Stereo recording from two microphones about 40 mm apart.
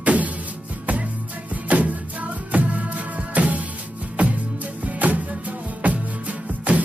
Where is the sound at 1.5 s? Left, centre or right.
Right.